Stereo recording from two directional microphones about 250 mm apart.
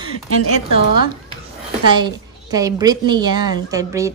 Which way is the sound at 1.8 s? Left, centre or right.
Centre.